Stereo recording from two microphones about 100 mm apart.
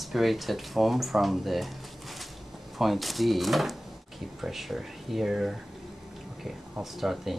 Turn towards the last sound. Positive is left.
turn(degrees=0)  # may be behind; listen again after turning